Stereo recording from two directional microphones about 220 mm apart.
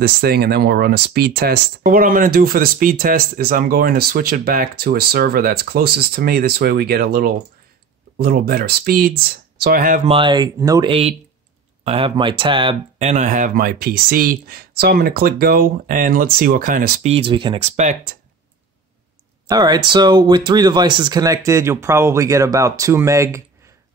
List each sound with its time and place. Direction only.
0.0 s speech: 45° right (ahead or behind)
10.0 s speech: 25° right (ahead or behind); by 17.1 s 40° right (ahead or behind)
17.1 s speech: 25° right (ahead or behind)
19.4 s speech: 20° right (ahead or behind)